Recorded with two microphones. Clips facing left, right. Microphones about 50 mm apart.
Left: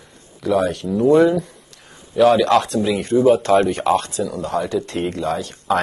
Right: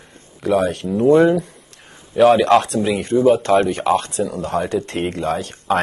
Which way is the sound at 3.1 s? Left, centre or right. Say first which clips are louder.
Even; centre.